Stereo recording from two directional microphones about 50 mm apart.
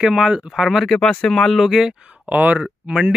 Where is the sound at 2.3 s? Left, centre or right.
Right.